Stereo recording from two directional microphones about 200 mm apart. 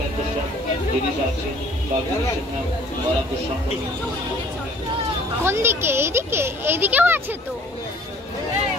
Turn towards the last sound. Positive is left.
turn(degrees=-10)  # may be behind; listen again after turning